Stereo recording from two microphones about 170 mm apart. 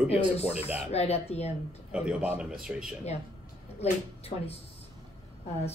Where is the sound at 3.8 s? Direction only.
35° left (ahead or behind).